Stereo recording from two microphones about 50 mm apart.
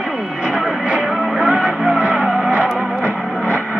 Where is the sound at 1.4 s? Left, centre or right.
Right.